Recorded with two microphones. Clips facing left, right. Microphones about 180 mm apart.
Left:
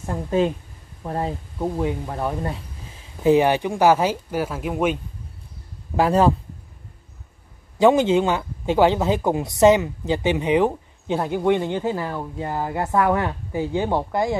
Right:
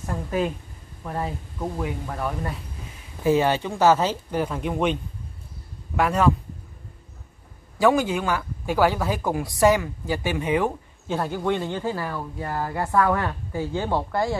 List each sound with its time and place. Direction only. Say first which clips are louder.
0.0 s speech: left 4 dB; 25° left (ahead or behind)
3.3 s speech: left 4 dB; 15° left (ahead or behind)
5.9 s speech: left 3 dB; 30° left (ahead or behind)
7.8 s speech: left 4 dB; 20° left (ahead or behind)